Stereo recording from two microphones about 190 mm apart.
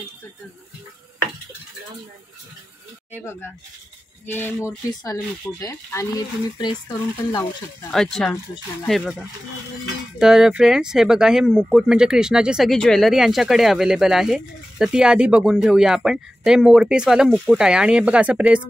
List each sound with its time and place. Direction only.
3.3 s speech: 10° left (ahead or behind)
7.9 s speech: centre (ahead or behind)
10.1 s speech: 5° right (ahead or behind)